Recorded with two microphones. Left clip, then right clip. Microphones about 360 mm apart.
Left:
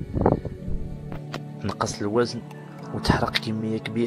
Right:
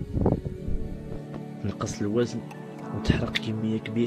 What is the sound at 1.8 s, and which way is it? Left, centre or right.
Speech, centre.